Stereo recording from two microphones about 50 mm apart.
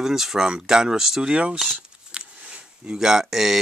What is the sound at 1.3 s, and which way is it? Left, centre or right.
Speech, centre.